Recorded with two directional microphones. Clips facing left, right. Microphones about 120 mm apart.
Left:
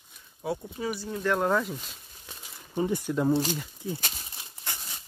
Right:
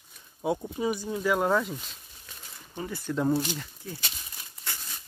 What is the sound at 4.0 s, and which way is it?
Crumpling, 45° left (ahead or behind).